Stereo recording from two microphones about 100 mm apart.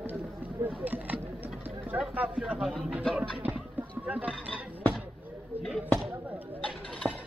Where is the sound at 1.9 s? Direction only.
10° right (ahead or behind).